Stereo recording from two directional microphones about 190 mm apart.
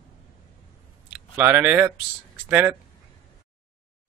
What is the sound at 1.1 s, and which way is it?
Speech, 10° right (ahead or behind).